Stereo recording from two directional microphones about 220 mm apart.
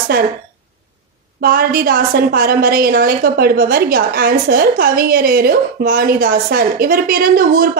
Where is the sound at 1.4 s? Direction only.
40° right (ahead or behind).